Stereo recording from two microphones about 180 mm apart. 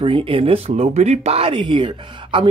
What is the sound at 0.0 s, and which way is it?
Speech, 30° right (ahead or behind).